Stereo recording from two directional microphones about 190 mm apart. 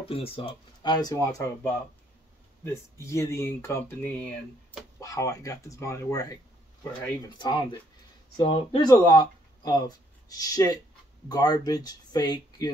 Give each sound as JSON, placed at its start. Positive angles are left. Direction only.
{"t": 0.1, "sound": "speech", "side_deg": 30}